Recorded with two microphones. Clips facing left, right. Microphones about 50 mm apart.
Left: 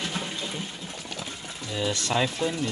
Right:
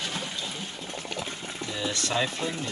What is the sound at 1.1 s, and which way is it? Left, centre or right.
Boiling, right.